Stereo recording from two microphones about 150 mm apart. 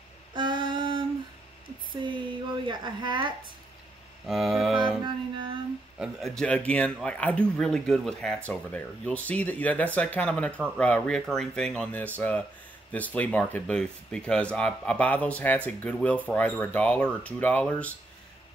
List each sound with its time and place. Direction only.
0.3 s a sound: 30° right (ahead or behind)
4.3 s speech: centre (ahead or behind)
5.0 s music: 35° right (ahead or behind)
5.9 s speech: centre (ahead or behind)